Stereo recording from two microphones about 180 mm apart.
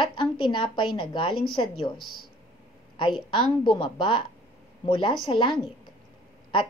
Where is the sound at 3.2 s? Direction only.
25° left (ahead or behind).